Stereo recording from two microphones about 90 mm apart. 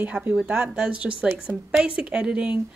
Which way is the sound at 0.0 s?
15° right (ahead or behind).